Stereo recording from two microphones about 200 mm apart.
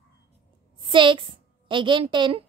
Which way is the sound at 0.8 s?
25° right (ahead or behind).